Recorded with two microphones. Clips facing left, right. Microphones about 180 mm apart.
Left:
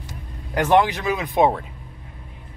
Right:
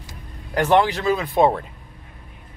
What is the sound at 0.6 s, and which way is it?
Speech, 15° left (ahead or behind).